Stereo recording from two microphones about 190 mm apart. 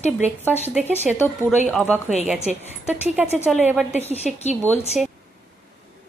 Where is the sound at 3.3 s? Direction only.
10° left (ahead or behind).